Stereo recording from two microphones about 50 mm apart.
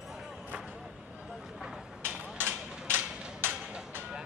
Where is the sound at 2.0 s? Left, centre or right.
Right.